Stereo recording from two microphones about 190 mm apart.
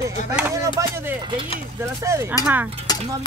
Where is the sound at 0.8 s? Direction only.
15° right (ahead or behind).